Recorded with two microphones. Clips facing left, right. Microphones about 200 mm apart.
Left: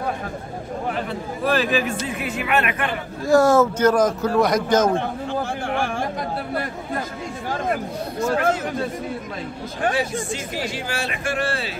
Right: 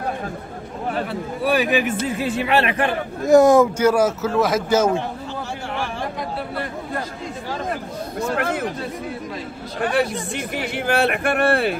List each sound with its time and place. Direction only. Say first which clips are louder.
1.4 s speech: right 2 dB; 15° right (ahead or behind)
2.1 s speech: right 4 dB; 30° right (ahead or behind)
3.3 s a man's voice: right 3 dB; 20° right (ahead or behind)
8.4 s speech: left 2 dB; 60° right (ahead or behind)
9.9 s speech: right 3 dB; 60° right (ahead or behind)